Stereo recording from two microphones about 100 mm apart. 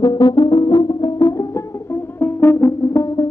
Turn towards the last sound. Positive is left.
turn(degrees=35)  # may be behind; listen again after turning